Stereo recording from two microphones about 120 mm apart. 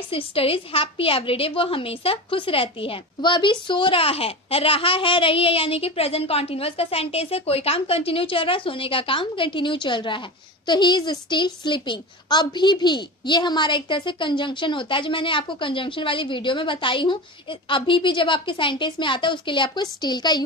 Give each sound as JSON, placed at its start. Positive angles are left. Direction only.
{"t": 0.1, "sound": "a woman's voice", "side_deg": 50}